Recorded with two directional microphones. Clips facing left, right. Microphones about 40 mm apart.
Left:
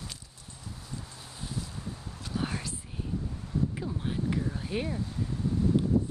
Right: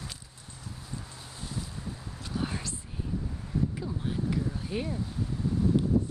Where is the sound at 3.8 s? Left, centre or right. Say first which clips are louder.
Even; left.